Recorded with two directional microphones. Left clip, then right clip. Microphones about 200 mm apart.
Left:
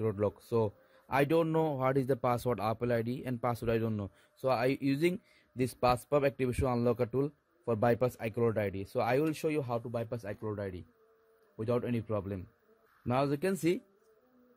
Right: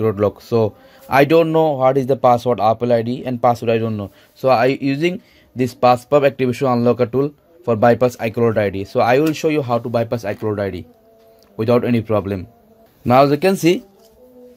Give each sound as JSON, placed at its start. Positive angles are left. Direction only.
{"t": 0.0, "sound": "a man's voice", "side_deg": 20}